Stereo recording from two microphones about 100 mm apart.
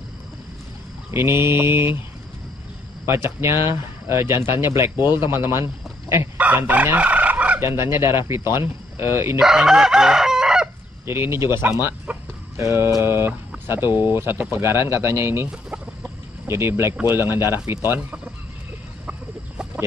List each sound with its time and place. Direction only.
1.1 s speech: 25° right (ahead or behind)
3.1 s speech: 25° right (ahead or behind)
6.3 s chicken: 15° right (ahead or behind)
7.6 s speech: 30° right (ahead or behind)
9.4 s chicken: 5° right (ahead or behind)
11.1 s speech: 25° right (ahead or behind)
11.8 s chicken: 25° right (ahead or behind)
13.0 s speech: 25° right (ahead or behind)
15.5 s chicken: 10° right (ahead or behind)
16.4 s speech: 25° right (ahead or behind)
19.0 s chicken: 10° right (ahead or behind)